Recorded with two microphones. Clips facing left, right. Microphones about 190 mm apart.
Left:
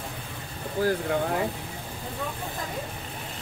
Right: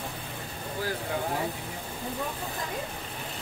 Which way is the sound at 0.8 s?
45° left (ahead or behind).